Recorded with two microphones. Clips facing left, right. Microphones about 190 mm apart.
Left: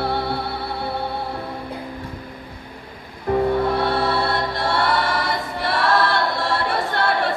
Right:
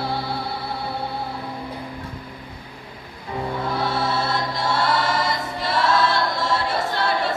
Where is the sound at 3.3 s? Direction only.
55° left (ahead or behind).